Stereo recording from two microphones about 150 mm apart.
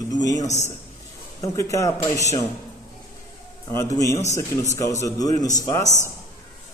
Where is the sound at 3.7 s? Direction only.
20° left (ahead or behind).